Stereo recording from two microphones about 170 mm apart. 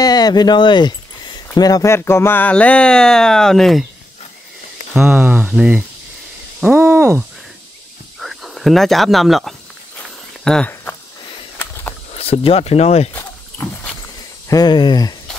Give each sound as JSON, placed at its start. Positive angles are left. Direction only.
{"t": 0.0, "sound": "speech", "side_deg": 25}
{"t": 4.9, "sound": "speech", "side_deg": -5}
{"t": 6.6, "sound": "owl", "side_deg": -10}
{"t": 8.2, "sound": "speech", "side_deg": 0}
{"t": 11.5, "sound": "a sound", "side_deg": 10}
{"t": 12.1, "sound": "speech", "side_deg": 35}
{"t": 14.5, "sound": "speech", "side_deg": 25}